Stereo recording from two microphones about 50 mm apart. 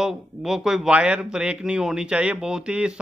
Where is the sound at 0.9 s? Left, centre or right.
Right.